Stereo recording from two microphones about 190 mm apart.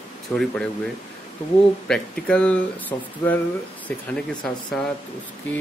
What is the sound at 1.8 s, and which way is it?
Speech, 5° left (ahead or behind).